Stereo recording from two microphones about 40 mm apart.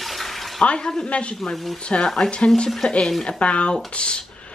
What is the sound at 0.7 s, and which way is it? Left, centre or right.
Speech, centre.